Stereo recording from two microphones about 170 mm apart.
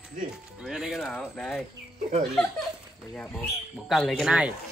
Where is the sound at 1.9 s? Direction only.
45° right (ahead or behind).